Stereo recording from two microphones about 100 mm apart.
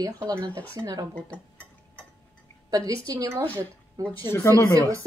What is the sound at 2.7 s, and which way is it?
A woman's voice, 35° right (ahead or behind).